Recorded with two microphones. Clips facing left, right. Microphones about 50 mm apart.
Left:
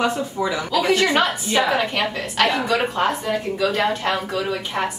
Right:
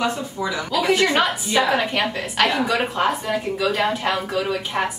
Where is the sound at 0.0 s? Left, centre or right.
Centre.